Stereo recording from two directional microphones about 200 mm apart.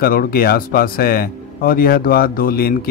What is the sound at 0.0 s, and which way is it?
Speech, 45° left (ahead or behind).